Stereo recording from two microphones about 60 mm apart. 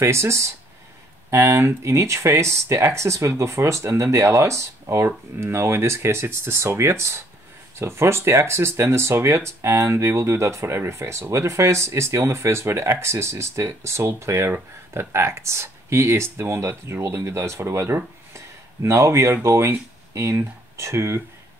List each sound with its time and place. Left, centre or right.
0.0 s speech: right